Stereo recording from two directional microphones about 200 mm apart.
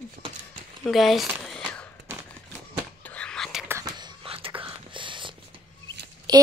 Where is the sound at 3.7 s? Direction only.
20° right (ahead or behind).